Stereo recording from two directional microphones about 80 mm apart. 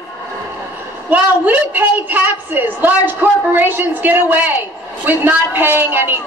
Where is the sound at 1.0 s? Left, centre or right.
Right.